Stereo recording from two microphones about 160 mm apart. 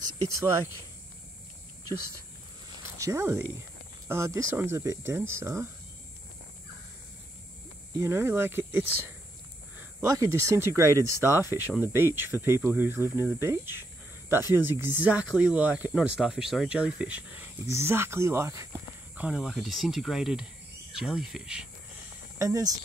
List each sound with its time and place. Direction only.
3.0 s speech: 20° right (ahead or behind)
8.0 s speech: 15° right (ahead or behind)
10.1 s speech: 20° right (ahead or behind)
19.1 s speech: 5° right (ahead or behind)
22.4 s speech: 20° right (ahead or behind)